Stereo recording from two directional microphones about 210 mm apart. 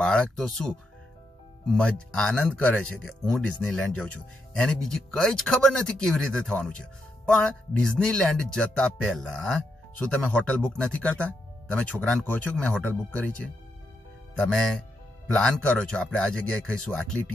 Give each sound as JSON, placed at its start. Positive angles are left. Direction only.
{"t": 0.0, "sound": "speech", "side_deg": 5}
{"t": 15.3, "sound": "speech", "side_deg": 5}